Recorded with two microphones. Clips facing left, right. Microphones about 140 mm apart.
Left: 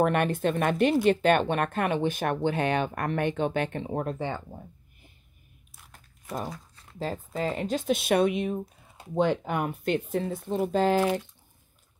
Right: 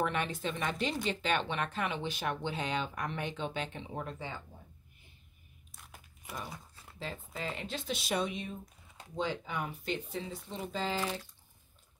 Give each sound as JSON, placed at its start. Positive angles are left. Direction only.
{"t": 0.0, "sound": "speech", "side_deg": 55}
{"t": 5.9, "sound": "crumpling", "side_deg": -5}
{"t": 7.0, "sound": "speech", "side_deg": 45}